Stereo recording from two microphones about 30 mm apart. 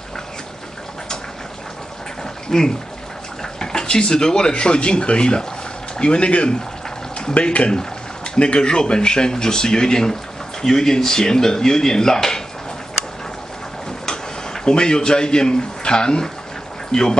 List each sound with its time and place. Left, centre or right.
2.5 s speech: centre; by 6.5 s left
7.4 s speech: left
8.4 s speech: left; by 12.4 s centre
14.0 s a man's voice: left